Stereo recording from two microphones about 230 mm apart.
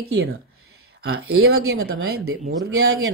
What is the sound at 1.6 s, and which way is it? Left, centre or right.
Speech, right.